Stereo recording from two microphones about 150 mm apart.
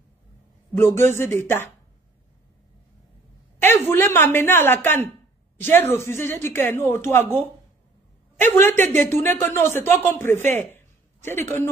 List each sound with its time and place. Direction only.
0.7 s speech: 15° left (ahead or behind)
3.6 s speech: 15° left (ahead or behind)